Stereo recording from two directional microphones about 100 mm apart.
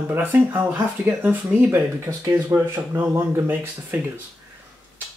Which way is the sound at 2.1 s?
35° right (ahead or behind).